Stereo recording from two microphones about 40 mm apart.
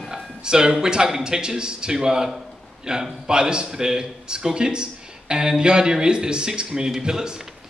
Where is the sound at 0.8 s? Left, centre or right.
Centre.